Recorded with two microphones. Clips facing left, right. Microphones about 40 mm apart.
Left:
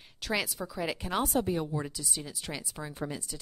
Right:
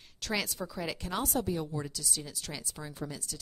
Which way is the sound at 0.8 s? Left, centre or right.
Centre.